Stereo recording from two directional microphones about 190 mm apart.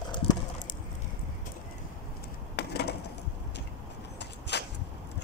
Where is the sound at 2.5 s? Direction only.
60° left (ahead or behind).